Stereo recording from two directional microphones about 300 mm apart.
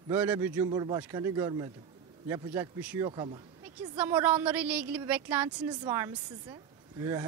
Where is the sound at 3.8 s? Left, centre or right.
Centre.